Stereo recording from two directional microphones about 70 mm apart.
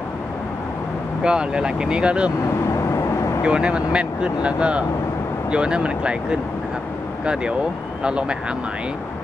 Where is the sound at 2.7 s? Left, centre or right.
Left.